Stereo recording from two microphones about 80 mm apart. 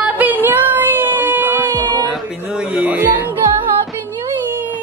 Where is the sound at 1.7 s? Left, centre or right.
Right.